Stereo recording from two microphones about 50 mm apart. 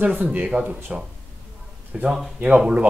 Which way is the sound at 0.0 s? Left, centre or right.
Right.